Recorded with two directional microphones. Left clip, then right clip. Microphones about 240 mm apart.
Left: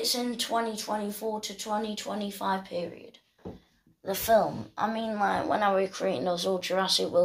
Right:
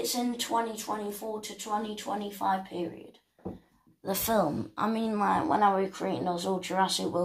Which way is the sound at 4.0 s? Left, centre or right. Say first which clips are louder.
Left 4 dB; centre.